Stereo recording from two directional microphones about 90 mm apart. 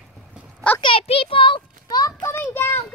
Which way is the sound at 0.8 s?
85° left.